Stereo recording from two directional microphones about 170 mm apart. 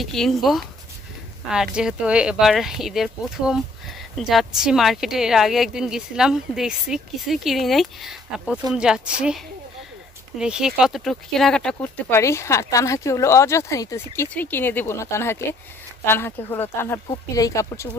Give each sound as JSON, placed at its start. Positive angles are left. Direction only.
{"t": 0.0, "sound": "speech", "side_deg": 0}
{"t": 1.8, "sound": "speech", "side_deg": -5}
{"t": 10.4, "sound": "speech", "side_deg": -5}
{"t": 12.2, "sound": "speech", "side_deg": 15}